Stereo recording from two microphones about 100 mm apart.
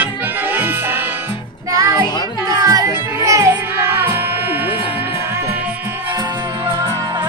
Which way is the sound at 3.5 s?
20° right (ahead or behind).